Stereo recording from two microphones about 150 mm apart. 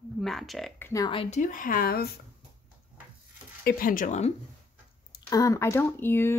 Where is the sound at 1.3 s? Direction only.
60° left (ahead or behind); by 2.1 s 85° left.